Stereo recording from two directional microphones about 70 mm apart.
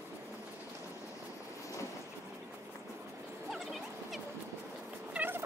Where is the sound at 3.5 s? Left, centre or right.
Centre.